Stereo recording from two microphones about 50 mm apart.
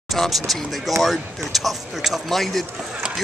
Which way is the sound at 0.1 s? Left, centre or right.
Centre.